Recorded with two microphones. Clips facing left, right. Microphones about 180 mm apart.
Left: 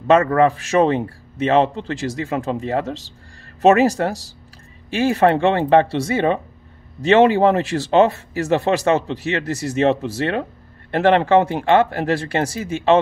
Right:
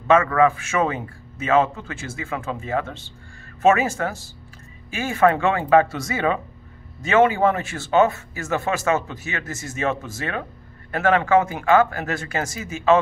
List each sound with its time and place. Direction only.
0.0 s speech: 40° left (ahead or behind)